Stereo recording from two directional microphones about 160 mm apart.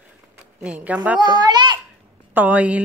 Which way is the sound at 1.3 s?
25° right (ahead or behind).